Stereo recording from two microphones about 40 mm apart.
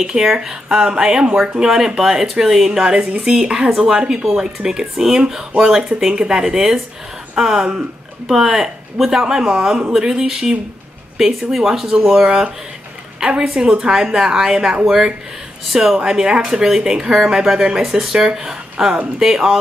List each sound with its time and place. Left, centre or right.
0.0 s a woman's voice: centre
13.3 s a woman's voice: right; by 16.0 s centre
16.0 s a woman's voice: right; by 18.1 s centre
18.1 s a woman's voice: centre